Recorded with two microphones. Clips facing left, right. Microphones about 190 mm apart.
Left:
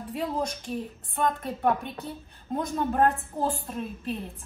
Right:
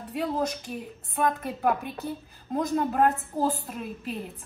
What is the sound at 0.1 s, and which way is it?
A woman's voice, centre (ahead or behind).